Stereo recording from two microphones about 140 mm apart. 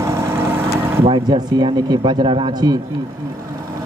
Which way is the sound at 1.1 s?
30° right (ahead or behind).